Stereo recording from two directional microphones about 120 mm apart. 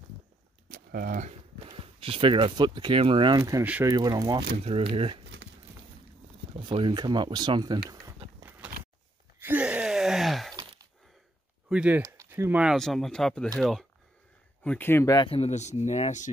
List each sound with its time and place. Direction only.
1.7 s a sound: 45° right (ahead or behind)
2.3 s speech: 40° right (ahead or behind)
4.4 s speech: 55° right (ahead or behind)
6.6 s speech: 45° right (ahead or behind)
8.4 s a sound: 15° right (ahead or behind)
9.4 s gasp: 15° right (ahead or behind)
10.6 s a sound: 45° right (ahead or behind)
11.7 s speech: 10° right (ahead or behind)
12.0 s speech: 20° right (ahead or behind)
12.7 s speech: 5° left (ahead or behind)
14.6 s speech: 15° left (ahead or behind)
15.1 s speech: 50° left (ahead or behind); by 16.3 s 75° left (ahead or behind)